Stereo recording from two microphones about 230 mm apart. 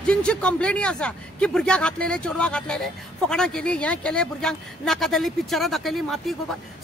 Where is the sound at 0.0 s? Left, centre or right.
Centre.